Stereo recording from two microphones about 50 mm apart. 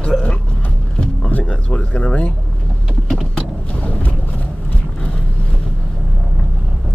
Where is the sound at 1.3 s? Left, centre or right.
Left.